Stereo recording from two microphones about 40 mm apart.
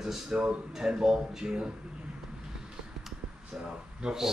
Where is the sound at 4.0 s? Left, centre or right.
Centre.